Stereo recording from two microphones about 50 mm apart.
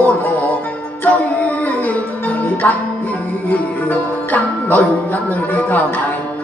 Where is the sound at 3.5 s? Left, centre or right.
Left.